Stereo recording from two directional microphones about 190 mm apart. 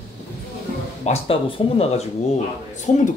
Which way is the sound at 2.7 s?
40° left (ahead or behind).